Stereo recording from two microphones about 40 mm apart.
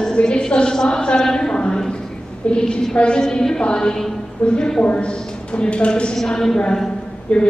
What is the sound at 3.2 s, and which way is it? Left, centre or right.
Speech, centre.